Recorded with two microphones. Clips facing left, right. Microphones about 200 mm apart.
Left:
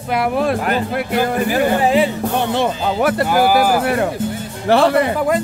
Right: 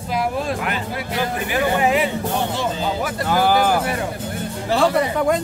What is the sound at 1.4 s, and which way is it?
Speech, 30° left (ahead or behind).